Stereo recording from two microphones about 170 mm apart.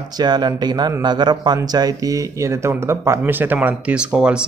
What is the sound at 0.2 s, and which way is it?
A man's voice, 25° right (ahead or behind).